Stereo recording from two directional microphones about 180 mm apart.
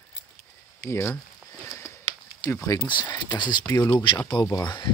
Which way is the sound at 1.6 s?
15° left (ahead or behind).